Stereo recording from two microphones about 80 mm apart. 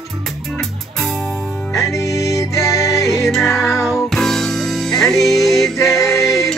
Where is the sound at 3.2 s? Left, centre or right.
Centre.